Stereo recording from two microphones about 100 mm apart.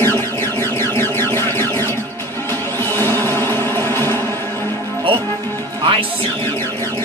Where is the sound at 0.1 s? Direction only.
25° left (ahead or behind).